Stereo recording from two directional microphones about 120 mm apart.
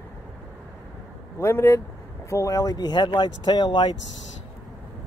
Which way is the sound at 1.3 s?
20° left (ahead or behind).